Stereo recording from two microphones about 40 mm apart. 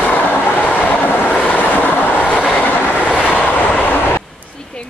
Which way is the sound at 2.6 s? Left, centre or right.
Left.